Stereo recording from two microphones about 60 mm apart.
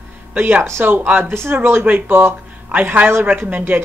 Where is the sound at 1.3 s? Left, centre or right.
Right.